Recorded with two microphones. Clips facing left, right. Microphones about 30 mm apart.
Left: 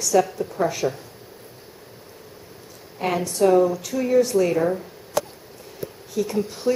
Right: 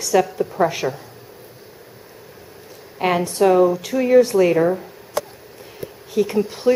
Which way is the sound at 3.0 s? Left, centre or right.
Right.